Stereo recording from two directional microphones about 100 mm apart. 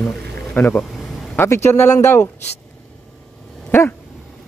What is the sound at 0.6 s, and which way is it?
Speech, 20° left (ahead or behind).